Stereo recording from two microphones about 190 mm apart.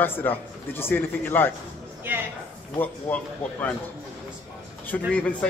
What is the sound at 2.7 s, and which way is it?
A man's voice, 10° left (ahead or behind).